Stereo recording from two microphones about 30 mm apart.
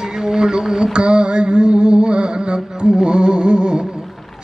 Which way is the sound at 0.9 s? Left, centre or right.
Right.